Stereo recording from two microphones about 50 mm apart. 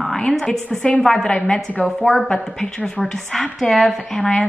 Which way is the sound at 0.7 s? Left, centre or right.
Left.